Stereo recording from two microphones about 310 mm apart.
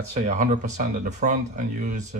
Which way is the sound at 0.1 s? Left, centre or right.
Right.